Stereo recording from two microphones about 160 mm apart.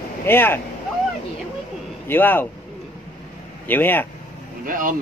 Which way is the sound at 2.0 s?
10° left (ahead or behind).